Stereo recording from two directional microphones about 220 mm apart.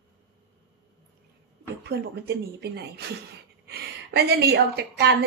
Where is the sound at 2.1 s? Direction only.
50° right (ahead or behind).